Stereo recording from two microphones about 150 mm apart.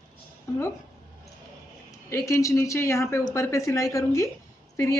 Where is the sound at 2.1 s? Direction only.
20° left (ahead or behind).